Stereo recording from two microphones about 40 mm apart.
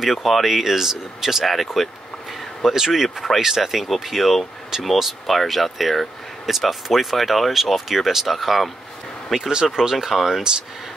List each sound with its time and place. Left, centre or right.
0.0 s speech: centre
9.3 s speech: centre